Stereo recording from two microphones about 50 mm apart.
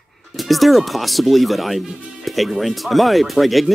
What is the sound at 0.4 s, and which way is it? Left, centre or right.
Speech, centre.